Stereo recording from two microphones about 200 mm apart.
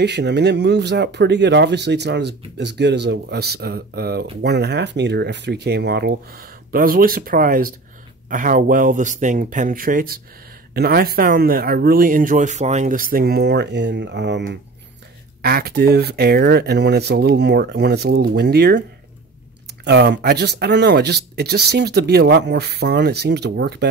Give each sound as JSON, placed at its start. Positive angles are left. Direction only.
{"t": 0.0, "sound": "speech", "side_deg": -60}
{"t": 15.4, "sound": "speech", "side_deg": -50}